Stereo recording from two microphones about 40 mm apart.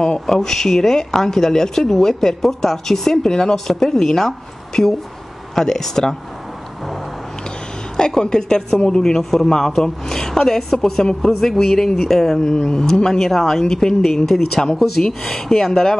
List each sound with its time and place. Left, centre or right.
0.3 s a woman's voice: centre
8.2 s a woman's voice: centre
12.7 s a woman's voice: centre